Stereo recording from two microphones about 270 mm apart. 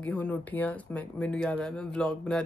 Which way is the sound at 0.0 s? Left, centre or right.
Centre.